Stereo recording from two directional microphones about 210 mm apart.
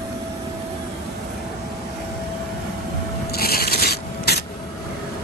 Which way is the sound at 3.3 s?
45° left (ahead or behind).